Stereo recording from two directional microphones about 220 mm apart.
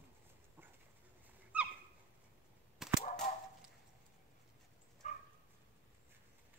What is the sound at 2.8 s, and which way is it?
Cap gun, centre (ahead or behind).